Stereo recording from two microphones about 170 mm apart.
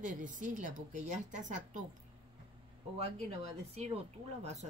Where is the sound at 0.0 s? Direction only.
50° right (ahead or behind).